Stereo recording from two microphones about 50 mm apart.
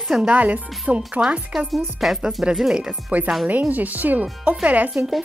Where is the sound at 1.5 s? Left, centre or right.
Centre.